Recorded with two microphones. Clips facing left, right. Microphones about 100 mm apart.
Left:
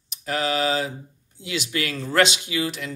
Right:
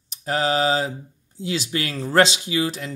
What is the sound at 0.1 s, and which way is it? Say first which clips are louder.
Mantra: right 3 dB; 30° right (ahead or behind).